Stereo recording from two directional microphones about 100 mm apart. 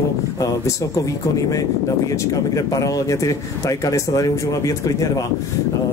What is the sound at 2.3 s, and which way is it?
A man's voice, 35° left (ahead or behind).